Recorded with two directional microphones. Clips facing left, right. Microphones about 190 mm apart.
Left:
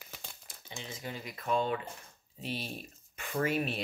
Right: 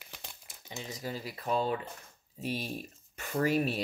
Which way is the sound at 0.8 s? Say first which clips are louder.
Right 3 dB; 40° right (ahead or behind).